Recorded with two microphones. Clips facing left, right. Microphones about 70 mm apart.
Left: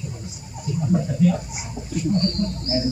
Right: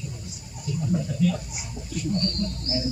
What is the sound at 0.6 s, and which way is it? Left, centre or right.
Speech, left.